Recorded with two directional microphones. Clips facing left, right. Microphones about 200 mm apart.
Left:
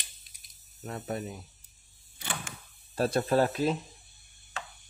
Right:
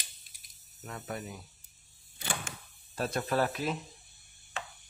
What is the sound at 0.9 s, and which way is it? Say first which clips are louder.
Speech: left 5 dB; 30° left (ahead or behind).